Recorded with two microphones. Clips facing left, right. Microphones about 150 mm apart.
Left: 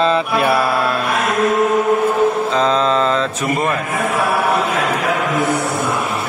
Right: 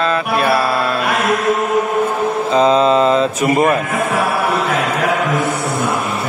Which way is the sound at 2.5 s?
5° right (ahead or behind).